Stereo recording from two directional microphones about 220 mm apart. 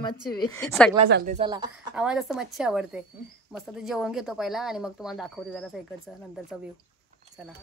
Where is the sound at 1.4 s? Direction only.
20° right (ahead or behind).